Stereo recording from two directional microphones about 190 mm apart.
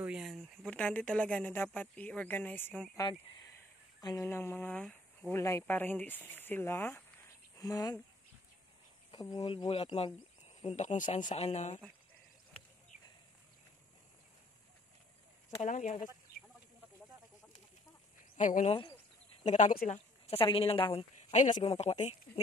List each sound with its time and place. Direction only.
0.0 s speech: 5° right (ahead or behind)
3.0 s speech: 20° left (ahead or behind)
9.1 s speech: 25° left (ahead or behind)
15.5 s speech: 40° left (ahead or behind)
18.3 s speech: 40° left (ahead or behind)
20.2 s a woman's voice: 30° left (ahead or behind)